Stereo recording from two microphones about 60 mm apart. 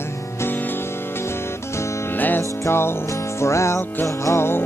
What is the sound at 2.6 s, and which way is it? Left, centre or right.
Music, left.